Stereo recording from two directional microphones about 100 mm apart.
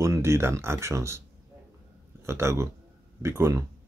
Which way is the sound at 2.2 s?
25° right (ahead or behind).